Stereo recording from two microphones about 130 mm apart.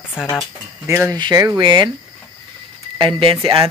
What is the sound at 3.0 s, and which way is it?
Speech, 40° right (ahead or behind).